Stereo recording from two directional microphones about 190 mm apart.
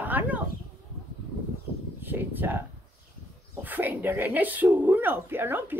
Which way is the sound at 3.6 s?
10° right (ahead or behind).